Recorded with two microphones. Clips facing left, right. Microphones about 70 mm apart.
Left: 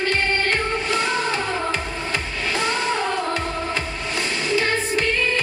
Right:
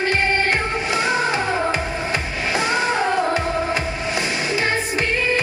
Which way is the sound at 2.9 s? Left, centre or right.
Centre.